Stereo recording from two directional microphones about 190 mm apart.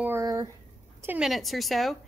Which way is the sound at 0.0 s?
15° right (ahead or behind).